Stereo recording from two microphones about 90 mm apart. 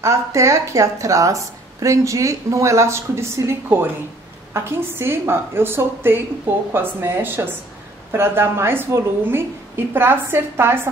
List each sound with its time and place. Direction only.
0.0 s a woman's voice: 35° right (ahead or behind)